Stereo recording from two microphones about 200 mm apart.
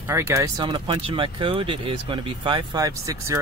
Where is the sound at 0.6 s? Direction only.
25° right (ahead or behind).